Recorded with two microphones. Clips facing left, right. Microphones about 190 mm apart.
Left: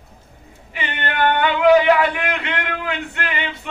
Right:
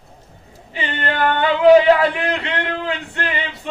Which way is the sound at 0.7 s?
30° right (ahead or behind).